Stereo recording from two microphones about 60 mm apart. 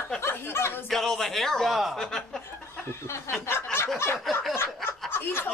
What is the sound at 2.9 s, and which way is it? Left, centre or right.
A woman's voice, left.